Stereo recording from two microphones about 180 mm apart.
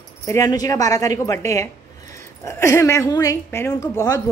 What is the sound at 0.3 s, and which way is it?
A woman's voice, 20° left (ahead or behind).